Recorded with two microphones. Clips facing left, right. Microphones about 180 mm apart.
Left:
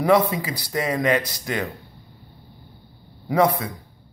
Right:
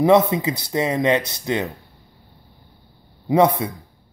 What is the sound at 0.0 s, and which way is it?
Speech, 25° right (ahead or behind).